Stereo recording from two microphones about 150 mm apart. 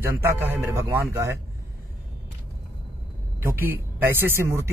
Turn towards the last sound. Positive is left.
turn(degrees=-15)  # may be behind; listen again after turning